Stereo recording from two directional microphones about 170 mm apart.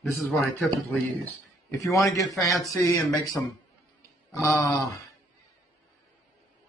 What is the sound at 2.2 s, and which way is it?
Speech, centre (ahead or behind).